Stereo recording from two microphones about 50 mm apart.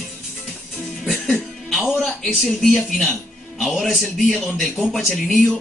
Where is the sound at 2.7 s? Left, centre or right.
Centre.